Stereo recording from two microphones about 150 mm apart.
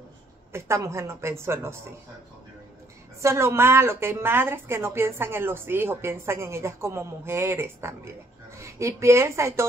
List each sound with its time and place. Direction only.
0.5 s a woman's voice: 15° right (ahead or behind)
3.2 s a woman's voice: 20° right (ahead or behind)